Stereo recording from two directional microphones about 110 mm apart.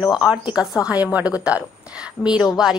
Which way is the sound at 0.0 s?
5° right (ahead or behind).